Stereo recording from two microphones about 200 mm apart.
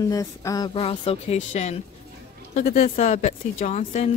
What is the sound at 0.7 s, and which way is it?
A woman's voice, 30° left (ahead or behind).